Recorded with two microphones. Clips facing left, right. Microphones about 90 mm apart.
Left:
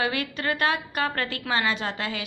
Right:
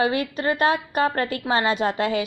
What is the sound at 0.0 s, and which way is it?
A woman's voice, 35° right (ahead or behind).